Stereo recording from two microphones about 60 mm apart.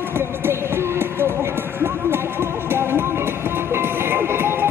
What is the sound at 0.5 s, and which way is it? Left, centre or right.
Music, right.